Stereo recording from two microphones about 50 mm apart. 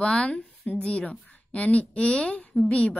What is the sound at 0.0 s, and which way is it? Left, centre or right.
A woman's voice, centre.